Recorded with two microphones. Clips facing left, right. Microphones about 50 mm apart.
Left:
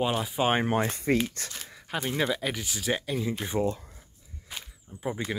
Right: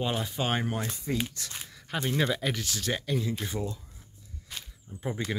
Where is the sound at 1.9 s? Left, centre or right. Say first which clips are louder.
Even; centre.